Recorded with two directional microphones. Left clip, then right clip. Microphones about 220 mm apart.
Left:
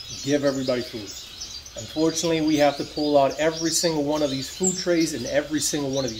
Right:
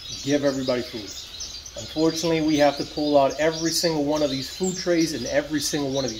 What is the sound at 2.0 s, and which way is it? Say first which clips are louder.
Speech: even; centre (ahead or behind).